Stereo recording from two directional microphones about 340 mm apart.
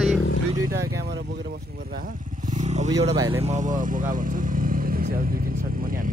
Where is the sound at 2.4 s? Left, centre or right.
Right.